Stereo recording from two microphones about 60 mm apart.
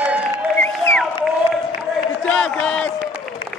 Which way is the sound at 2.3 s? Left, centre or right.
Centre.